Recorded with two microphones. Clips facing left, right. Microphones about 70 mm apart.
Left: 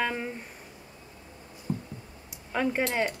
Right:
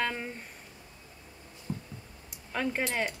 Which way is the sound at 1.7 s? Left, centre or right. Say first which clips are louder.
Left 5 dB; left.